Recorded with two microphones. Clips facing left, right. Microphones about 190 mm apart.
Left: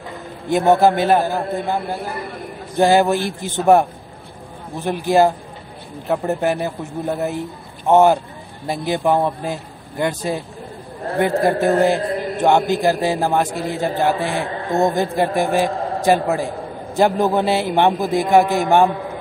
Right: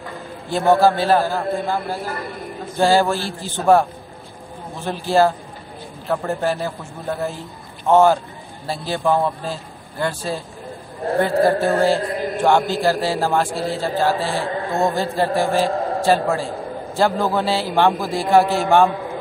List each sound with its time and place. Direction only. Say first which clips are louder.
0.5 s a man's voice: left 1 dB; 20° left (ahead or behind)